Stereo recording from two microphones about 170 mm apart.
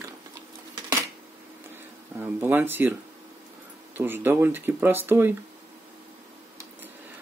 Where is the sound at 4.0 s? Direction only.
10° right (ahead or behind).